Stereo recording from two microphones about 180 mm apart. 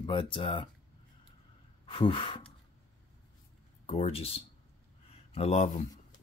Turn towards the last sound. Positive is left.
turn(degrees=35)  # may be behind; listen again after turning